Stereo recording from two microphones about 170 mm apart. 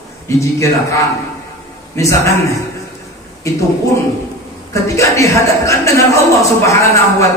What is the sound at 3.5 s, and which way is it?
Speech, 20° left (ahead or behind).